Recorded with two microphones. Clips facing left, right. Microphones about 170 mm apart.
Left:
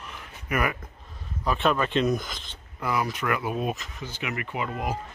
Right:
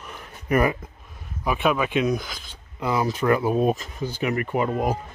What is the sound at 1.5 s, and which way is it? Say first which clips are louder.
Speech: right 2 dB; 10° right (ahead or behind).